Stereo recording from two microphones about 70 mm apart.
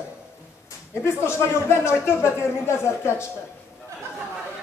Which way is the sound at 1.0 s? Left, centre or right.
Left.